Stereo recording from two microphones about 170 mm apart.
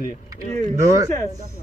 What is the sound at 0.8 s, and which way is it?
Speech, 20° right (ahead or behind).